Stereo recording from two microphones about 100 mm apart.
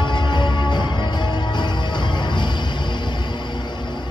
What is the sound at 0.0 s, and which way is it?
Music, 50° left (ahead or behind).